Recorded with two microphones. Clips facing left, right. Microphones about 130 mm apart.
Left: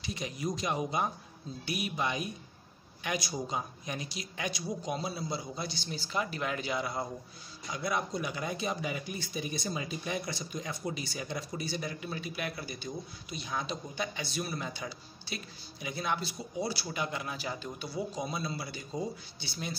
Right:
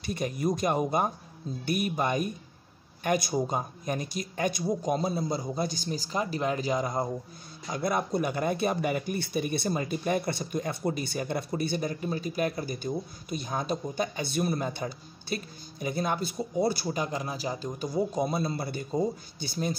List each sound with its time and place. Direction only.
0.0 s speech: 50° right (ahead or behind)